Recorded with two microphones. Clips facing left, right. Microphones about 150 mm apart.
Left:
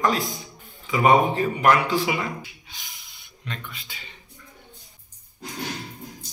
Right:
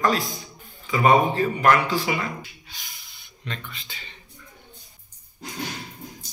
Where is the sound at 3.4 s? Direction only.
10° left (ahead or behind).